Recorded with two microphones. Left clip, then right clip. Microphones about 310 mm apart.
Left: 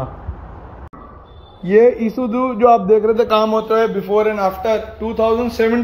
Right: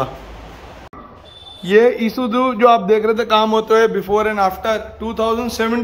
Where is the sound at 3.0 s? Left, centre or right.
Centre.